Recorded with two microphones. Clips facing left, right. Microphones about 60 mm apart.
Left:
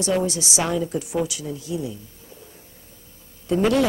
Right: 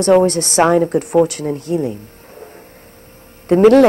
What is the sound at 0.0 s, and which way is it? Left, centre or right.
A woman's voice, right.